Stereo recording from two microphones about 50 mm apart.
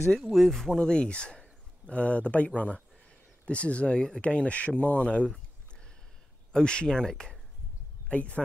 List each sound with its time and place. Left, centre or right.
0.3 s speech: centre; by 5.3 s left
6.5 s speech: centre
8.1 s speech: left